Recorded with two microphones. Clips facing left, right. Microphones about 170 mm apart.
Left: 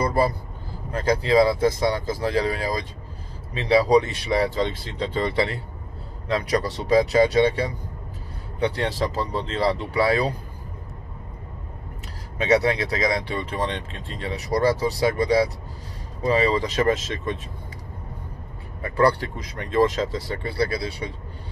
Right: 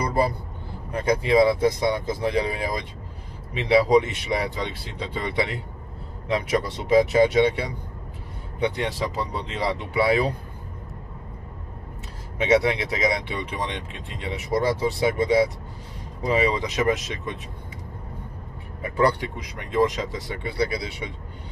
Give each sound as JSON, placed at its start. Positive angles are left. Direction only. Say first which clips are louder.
{"t": 0.0, "sound": "a man's voice", "louder": "left 2 dB", "side_deg": -20}
{"t": 6.9, "sound": "speech", "louder": "even", "side_deg": -20}
{"t": 12.4, "sound": "speech", "louder": "even", "side_deg": -20}
{"t": 18.8, "sound": "speech", "louder": "left 2 dB", "side_deg": -20}